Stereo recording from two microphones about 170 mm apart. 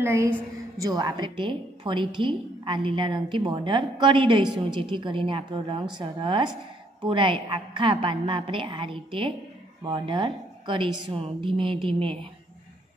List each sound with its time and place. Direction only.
0.0 s a woman's voice: 15° right (ahead or behind); by 12.3 s 30° right (ahead or behind)